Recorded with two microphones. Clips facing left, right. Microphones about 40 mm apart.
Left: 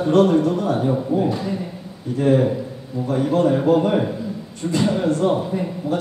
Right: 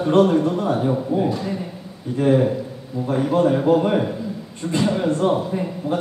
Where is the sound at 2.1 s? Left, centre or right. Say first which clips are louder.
Even; centre.